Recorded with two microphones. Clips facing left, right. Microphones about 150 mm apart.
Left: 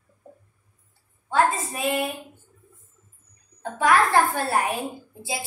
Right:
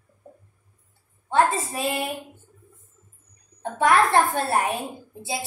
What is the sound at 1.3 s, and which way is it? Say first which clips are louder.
Speech: right 1 dB; 30° right (ahead or behind).